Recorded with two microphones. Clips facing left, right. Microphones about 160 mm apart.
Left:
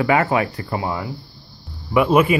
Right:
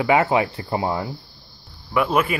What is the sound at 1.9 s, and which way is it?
Speech, 10° left (ahead or behind).